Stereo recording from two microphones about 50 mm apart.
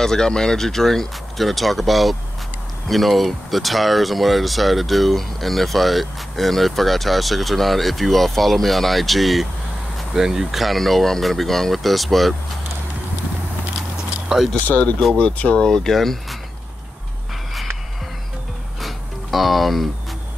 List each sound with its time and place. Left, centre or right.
0.0 s speech: centre
14.3 s speech: centre
15.1 s speech: left
15.6 s speech: centre
18.8 s a sound: centre